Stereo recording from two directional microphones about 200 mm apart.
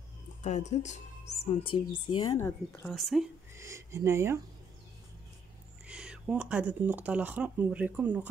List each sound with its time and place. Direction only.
0.4 s speech: 35° left (ahead or behind)
2.3 s speech: 15° left (ahead or behind)
2.9 s speech: centre (ahead or behind)
3.5 s a sound: 15° right (ahead or behind)
5.9 s speech: 5° right (ahead or behind)